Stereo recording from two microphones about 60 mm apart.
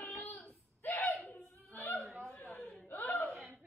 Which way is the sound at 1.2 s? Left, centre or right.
Left.